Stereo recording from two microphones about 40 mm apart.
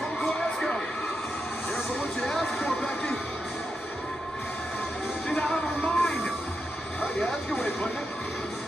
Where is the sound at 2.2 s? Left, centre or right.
Centre.